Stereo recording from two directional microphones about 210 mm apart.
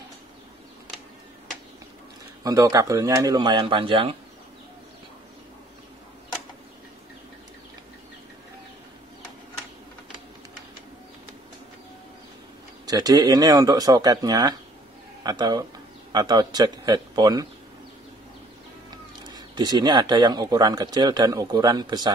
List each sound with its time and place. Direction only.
2.4 s speech: 15° right (ahead or behind)
12.8 s speech: 15° right (ahead or behind)
19.2 s speech: 20° right (ahead or behind)